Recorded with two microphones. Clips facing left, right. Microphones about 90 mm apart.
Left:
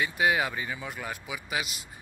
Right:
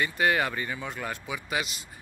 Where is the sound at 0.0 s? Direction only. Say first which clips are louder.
Right 1 dB; 10° left (ahead or behind).